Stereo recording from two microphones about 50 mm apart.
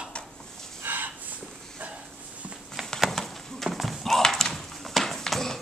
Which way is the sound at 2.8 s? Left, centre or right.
Centre.